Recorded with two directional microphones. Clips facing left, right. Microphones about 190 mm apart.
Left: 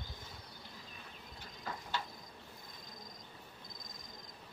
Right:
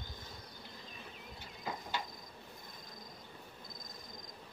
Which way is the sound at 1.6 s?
15° right (ahead or behind).